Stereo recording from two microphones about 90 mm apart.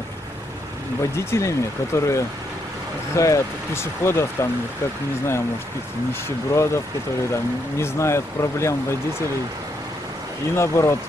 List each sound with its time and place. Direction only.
1.1 s speech: 30° left (ahead or behind)
6.2 s speech: 30° left (ahead or behind)
10.5 s speech: 30° left (ahead or behind)